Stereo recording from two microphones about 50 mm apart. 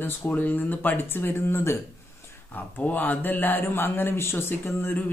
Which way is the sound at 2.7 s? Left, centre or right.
Left.